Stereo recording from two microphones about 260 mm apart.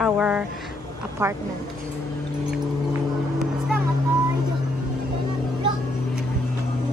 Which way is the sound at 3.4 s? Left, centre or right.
Centre.